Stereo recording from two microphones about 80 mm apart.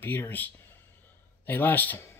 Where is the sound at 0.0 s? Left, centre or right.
Left.